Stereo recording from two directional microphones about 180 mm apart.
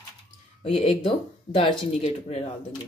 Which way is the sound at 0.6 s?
35° left (ahead or behind).